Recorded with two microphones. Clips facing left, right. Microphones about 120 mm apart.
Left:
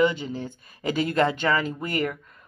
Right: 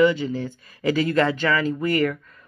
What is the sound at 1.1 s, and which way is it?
Speech, 35° left (ahead or behind).